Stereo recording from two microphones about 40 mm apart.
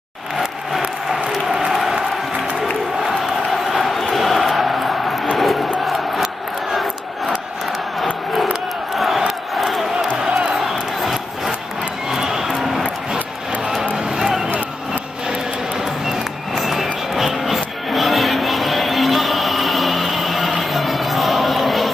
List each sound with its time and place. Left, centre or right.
0.4 s a sound: centre
3.0 s crowd: centre
8.9 s crowd: centre
12.1 s music: centre
16.6 s music: centre